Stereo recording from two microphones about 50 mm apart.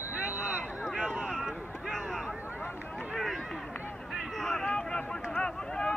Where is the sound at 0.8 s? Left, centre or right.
Centre.